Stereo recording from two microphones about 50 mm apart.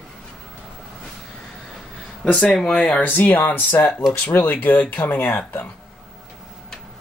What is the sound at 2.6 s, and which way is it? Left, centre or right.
Speech, left.